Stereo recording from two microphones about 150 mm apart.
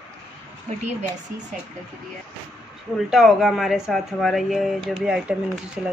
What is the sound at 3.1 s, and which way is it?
Speech, centre (ahead or behind).